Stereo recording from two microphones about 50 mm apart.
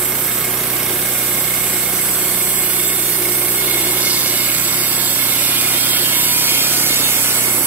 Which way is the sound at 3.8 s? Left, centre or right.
Right.